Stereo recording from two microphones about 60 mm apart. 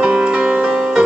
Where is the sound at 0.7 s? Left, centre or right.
Centre.